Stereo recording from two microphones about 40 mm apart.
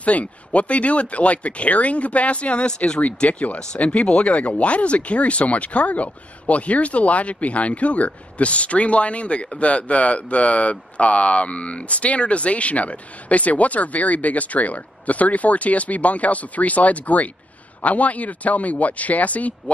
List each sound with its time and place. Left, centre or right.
0.0 s speech: left
3.3 s speech: left
3.5 s speech: left